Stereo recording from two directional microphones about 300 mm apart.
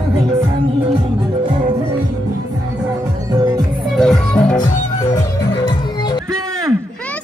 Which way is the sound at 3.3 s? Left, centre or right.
Centre.